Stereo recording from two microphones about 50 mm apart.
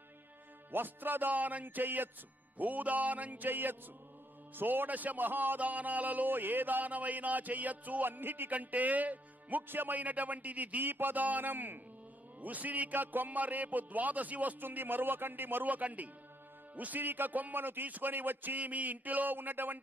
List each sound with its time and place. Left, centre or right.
0.7 s speech: right